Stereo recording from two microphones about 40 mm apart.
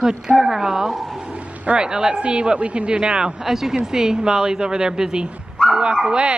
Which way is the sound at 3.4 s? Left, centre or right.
Centre.